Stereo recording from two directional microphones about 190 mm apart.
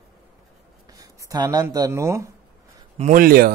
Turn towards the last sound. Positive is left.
turn(degrees=-50)  # may be behind; listen again after turning